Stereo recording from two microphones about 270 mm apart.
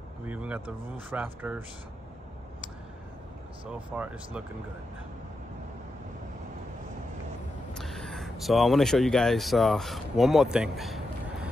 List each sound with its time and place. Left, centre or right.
0.3 s speech: centre
3.7 s speech: centre
7.7 s speech: centre